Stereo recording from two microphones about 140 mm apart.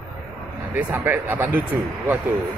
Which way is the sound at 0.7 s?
15° right (ahead or behind).